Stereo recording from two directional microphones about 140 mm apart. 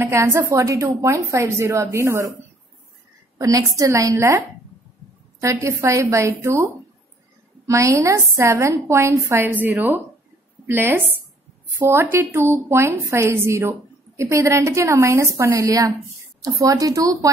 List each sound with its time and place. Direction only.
0.0 s a woman's voice: 20° right (ahead or behind)
3.3 s a woman's voice: 25° right (ahead or behind)